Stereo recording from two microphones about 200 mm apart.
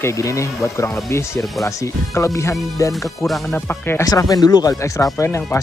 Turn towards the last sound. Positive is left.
turn(degrees=15)  # may be behind; listen again after turning